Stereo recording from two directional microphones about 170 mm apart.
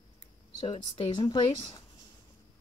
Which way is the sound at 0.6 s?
35° left (ahead or behind).